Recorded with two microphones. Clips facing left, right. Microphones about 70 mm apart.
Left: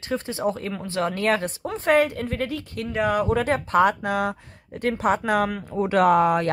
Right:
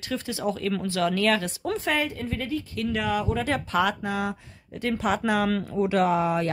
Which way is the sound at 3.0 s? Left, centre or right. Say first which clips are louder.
Left 8 dB; left.